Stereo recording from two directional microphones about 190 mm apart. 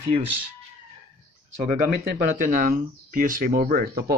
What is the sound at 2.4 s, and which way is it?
Speech, 45° right (ahead or behind).